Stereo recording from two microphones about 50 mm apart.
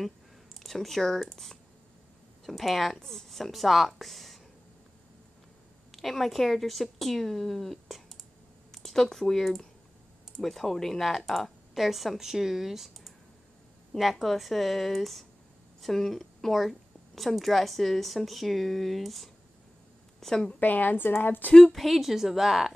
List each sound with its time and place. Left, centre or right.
0.6 s speech: centre
5.9 s speech: centre
20.2 s a woman's voice: centre
20.5 s a woman's voice: left
21.7 s speech: centre